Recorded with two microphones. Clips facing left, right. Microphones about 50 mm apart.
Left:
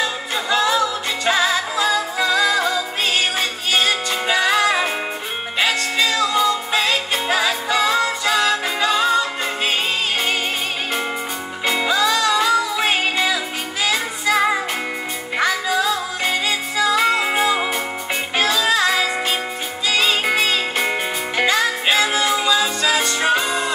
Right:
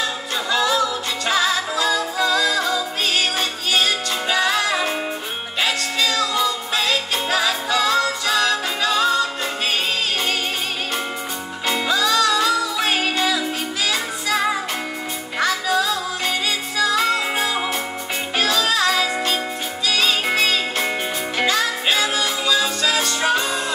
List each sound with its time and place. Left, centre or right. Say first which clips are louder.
0.5 s music: left 1 dB; centre
11.6 s music: left 2 dB; centre
18.4 s music: left 1 dB; centre